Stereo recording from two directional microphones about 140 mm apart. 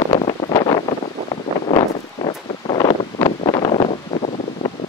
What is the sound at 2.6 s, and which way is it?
Wind, 30° left (ahead or behind).